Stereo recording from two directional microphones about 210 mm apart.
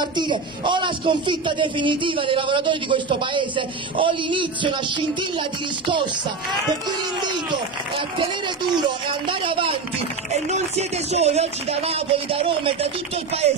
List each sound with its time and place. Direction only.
0.0 s a man's voice: 20° right (ahead or behind)
8.8 s a man's voice: 25° right (ahead or behind)